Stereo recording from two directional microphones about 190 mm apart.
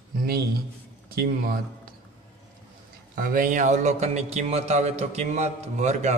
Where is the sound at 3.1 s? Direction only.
50° right (ahead or behind).